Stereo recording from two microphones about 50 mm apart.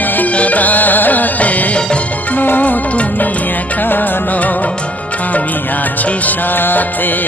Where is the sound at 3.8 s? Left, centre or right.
Left.